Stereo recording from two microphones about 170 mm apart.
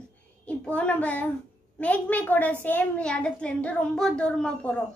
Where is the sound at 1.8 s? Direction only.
10° left (ahead or behind).